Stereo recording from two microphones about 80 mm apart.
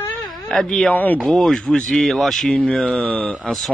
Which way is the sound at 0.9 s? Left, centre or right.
Left.